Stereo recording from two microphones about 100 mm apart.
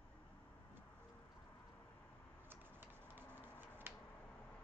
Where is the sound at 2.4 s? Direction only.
20° right (ahead or behind).